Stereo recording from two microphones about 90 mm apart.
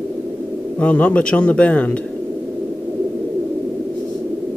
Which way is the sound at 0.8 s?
15° left (ahead or behind).